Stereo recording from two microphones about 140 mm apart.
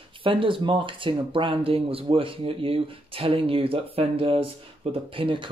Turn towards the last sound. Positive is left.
turn(degrees=-40)  # may be behind; listen again after turning